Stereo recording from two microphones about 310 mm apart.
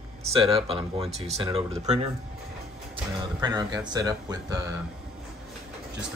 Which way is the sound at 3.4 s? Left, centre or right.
Centre.